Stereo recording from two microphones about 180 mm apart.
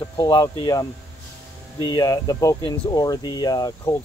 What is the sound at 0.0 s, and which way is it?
Speech, 25° left (ahead or behind).